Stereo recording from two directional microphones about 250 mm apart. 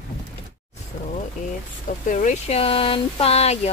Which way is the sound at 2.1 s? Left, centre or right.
Left.